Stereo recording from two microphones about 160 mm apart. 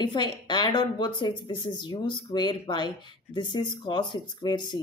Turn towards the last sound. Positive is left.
turn(degrees=25)  # may be behind; listen again after turning